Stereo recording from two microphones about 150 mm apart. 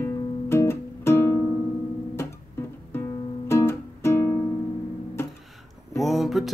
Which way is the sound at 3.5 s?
15° left (ahead or behind).